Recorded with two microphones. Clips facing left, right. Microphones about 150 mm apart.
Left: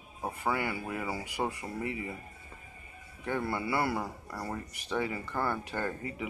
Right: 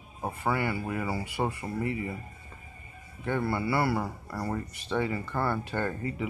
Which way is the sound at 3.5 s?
15° left (ahead or behind).